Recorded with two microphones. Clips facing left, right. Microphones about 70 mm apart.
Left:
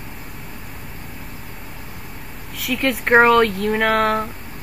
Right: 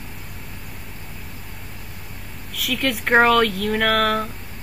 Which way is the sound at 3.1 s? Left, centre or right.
Centre.